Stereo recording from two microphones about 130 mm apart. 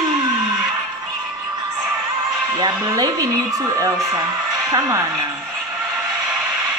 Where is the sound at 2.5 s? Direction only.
30° right (ahead or behind).